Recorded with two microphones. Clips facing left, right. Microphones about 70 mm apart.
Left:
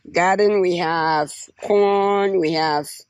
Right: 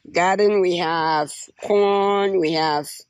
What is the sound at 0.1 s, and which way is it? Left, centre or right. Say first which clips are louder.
Speech: left 1 dB; left.